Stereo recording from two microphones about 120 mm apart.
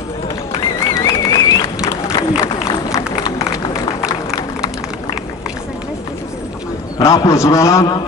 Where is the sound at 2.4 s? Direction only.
30° left (ahead or behind).